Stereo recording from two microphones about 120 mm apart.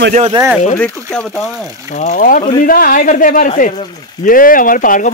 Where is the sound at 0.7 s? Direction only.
10° left (ahead or behind).